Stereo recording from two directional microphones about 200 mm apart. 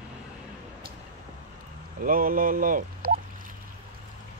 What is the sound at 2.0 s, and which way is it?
Speech, 45° right (ahead or behind).